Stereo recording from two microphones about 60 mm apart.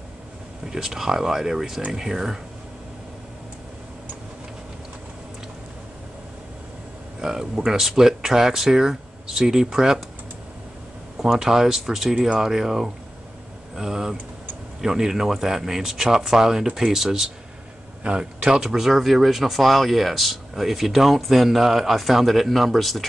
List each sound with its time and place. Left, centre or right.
0.7 s speech: centre
7.2 s speech: centre
11.1 s speech: centre
18.0 s speech: centre
18.6 s speech: centre